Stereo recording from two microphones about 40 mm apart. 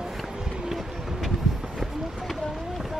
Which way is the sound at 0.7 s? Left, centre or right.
Centre.